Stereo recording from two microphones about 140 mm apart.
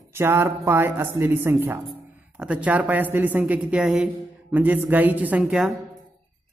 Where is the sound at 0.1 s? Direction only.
15° right (ahead or behind).